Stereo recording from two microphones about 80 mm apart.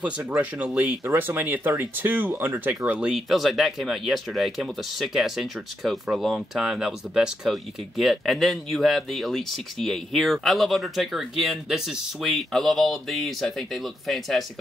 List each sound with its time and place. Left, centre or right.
0.2 s speech: right
2.9 s speech: centre